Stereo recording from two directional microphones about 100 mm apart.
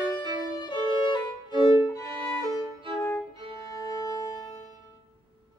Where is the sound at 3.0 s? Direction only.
25° left (ahead or behind).